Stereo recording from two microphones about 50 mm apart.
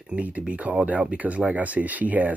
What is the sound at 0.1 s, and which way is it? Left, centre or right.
Speech, right.